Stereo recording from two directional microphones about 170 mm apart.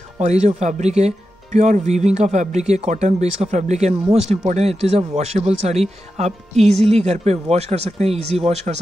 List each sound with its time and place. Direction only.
0.2 s speech: 40° right (ahead or behind)